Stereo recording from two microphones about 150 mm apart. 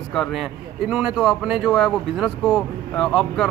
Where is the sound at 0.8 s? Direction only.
5° right (ahead or behind).